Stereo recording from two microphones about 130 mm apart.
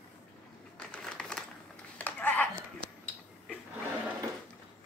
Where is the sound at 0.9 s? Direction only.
5° left (ahead or behind).